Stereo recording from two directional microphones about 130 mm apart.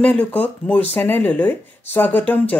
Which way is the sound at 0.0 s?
10° left (ahead or behind).